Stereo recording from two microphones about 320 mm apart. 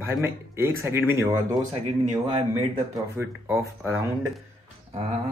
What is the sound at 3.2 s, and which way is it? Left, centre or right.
Speech, centre.